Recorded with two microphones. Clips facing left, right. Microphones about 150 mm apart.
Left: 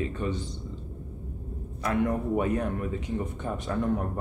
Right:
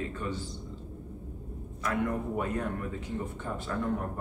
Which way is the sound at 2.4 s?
20° left (ahead or behind).